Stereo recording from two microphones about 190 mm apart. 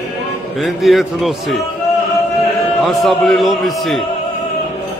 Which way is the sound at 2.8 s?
Centre (ahead or behind).